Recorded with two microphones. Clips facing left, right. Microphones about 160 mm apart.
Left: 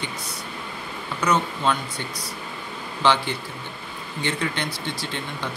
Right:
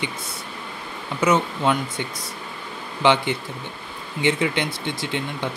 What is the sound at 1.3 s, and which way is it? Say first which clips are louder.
Speech: right 1 dB; 20° right (ahead or behind).